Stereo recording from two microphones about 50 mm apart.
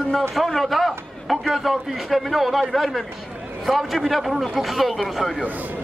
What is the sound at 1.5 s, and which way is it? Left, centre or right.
Speech, centre.